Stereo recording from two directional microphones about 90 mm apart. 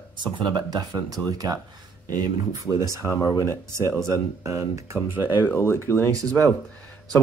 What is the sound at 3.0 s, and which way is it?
Speech, 40° left (ahead or behind).